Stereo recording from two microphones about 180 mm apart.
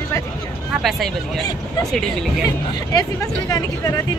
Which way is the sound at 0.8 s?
Centre (ahead or behind).